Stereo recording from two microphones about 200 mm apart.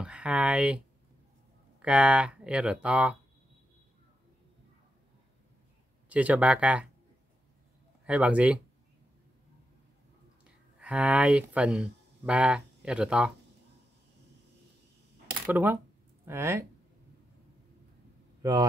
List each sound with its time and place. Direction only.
0.0 s speech: 5° right (ahead or behind)
1.8 s speech: 5° right (ahead or behind)
6.0 s speech: 5° right (ahead or behind)
8.0 s speech: 5° right (ahead or behind)
10.8 s speech: 5° right (ahead or behind)
15.4 s speech: 10° right (ahead or behind)
18.4 s speech: 20° right (ahead or behind)